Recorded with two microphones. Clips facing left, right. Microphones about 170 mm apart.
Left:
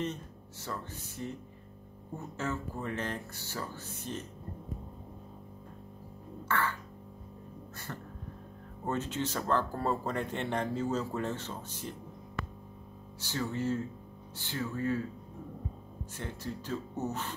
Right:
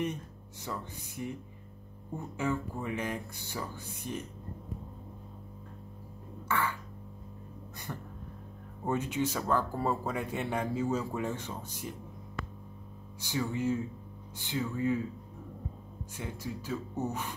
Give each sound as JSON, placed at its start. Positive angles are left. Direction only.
{"t": 0.7, "sound": "speech", "side_deg": -15}
{"t": 6.5, "sound": "speech", "side_deg": -15}
{"t": 7.7, "sound": "a sound", "side_deg": -15}
{"t": 8.8, "sound": "speech", "side_deg": -10}
{"t": 13.2, "sound": "speech", "side_deg": -15}
{"t": 16.2, "sound": "speech", "side_deg": -10}